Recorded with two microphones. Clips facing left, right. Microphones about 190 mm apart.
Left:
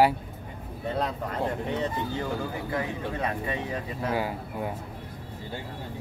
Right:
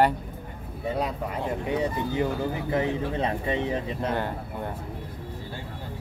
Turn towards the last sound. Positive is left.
turn(degrees=5)  # may be behind; listen again after turning